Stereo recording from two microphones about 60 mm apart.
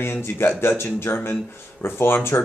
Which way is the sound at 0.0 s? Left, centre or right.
Left.